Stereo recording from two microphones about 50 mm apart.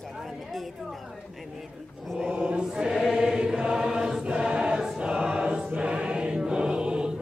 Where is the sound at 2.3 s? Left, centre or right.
Centre.